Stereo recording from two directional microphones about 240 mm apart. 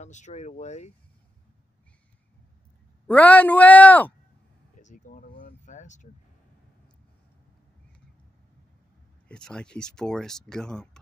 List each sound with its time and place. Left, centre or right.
0.0 s speech: left
3.1 s speech: centre
4.7 s a sound: left
9.3 s speech: centre